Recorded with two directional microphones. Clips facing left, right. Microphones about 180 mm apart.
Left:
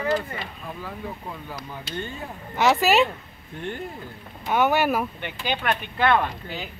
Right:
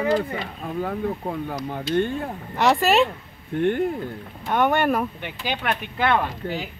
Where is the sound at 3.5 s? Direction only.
60° right (ahead or behind).